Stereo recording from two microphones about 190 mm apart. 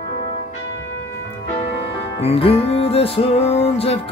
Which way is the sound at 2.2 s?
30° left (ahead or behind).